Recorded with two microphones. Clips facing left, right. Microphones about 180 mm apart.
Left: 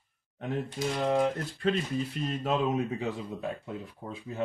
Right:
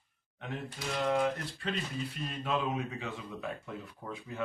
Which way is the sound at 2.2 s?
40° left (ahead or behind).